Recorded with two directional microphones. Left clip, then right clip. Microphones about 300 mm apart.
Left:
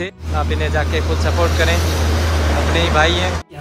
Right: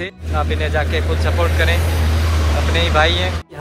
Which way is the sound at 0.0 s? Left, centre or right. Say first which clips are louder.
Even; centre.